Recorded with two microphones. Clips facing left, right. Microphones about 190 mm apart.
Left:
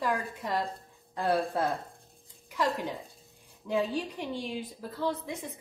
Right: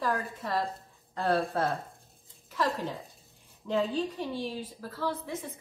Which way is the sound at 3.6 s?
10° left (ahead or behind).